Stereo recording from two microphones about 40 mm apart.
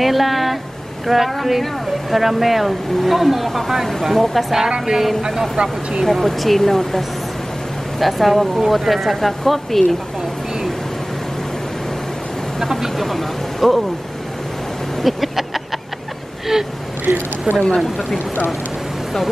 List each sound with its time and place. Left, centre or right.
0.0 s speech: centre
4.6 s a woman's voice: centre
5.6 s speech: right
6.0 s speech: centre
8.0 s speech: centre
12.5 s speech: centre
15.0 s vehicle: centre
16.5 s speech: centre
17.0 s speech: right
17.7 s speech: centre